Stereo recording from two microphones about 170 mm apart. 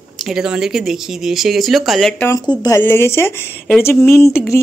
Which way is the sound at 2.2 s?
20° left (ahead or behind).